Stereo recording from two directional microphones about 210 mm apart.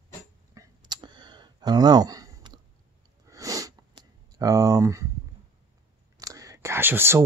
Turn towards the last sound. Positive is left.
turn(degrees=-10)  # may be behind; listen again after turning